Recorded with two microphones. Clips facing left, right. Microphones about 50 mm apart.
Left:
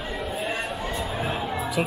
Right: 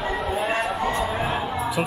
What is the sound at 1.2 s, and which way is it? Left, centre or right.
Music, centre.